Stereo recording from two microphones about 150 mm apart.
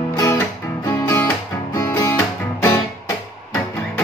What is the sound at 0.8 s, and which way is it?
Music, 25° left (ahead or behind).